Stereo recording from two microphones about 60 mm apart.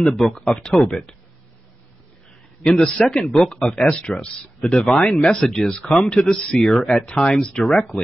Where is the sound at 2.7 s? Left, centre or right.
Centre.